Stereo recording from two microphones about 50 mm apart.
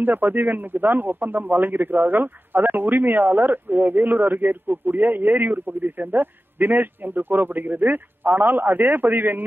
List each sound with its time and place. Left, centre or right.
0.0 s speech: right